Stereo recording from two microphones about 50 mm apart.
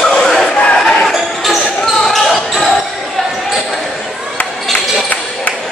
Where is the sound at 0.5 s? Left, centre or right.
Left.